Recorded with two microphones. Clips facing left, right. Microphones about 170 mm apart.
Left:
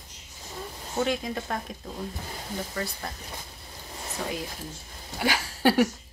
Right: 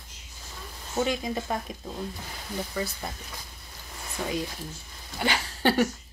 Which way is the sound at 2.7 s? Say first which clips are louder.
Right 1 dB; 5° right (ahead or behind).